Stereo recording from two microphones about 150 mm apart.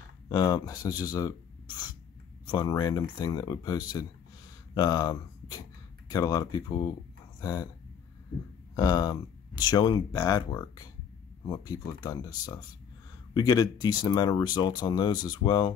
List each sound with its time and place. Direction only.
0.3 s speech: 25° left (ahead or behind)
8.7 s speech: 25° left (ahead or behind)